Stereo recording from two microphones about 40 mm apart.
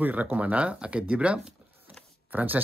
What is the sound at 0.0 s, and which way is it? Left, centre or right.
Speech, right.